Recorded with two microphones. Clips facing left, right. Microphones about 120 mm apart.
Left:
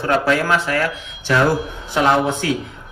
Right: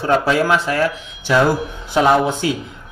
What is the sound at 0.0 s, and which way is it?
Speech, 25° right (ahead or behind).